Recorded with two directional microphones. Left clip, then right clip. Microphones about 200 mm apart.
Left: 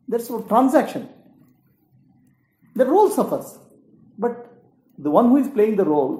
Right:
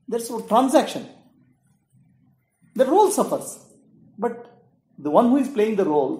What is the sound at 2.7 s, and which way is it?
Speech, 15° left (ahead or behind).